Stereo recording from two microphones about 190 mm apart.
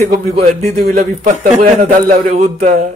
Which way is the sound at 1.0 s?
35° right (ahead or behind).